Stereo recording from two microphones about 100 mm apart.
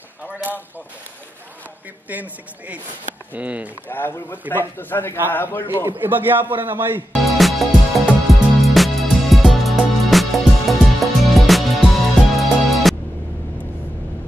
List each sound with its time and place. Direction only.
0.2 s a sound: 10° right (ahead or behind)
3.3 s speech: 15° right (ahead or behind)
3.9 s speech: 20° left (ahead or behind)
5.7 s a man's voice: 25° right (ahead or behind)
7.1 s music: centre (ahead or behind)